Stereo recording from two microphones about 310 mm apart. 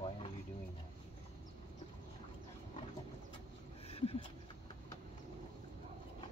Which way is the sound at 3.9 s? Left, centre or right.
Centre.